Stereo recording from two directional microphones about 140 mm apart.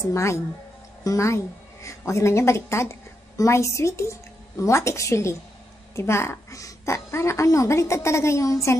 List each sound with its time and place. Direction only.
0.0 s a woman's voice: 20° left (ahead or behind)